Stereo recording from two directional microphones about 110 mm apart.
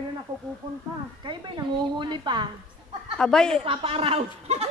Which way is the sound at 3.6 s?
55° right (ahead or behind).